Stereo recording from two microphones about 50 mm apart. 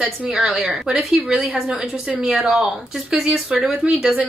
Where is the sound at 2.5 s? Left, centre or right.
Right.